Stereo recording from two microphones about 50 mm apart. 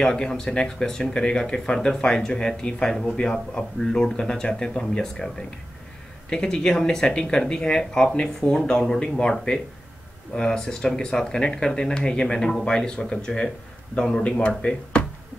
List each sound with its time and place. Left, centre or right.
0.0 s speech: centre
6.3 s speech: centre